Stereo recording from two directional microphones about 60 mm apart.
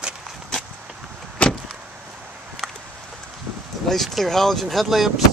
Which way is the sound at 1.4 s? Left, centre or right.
Left.